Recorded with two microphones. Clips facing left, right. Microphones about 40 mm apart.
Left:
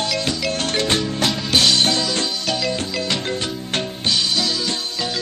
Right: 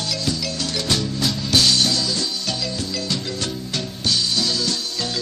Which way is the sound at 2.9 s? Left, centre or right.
Left.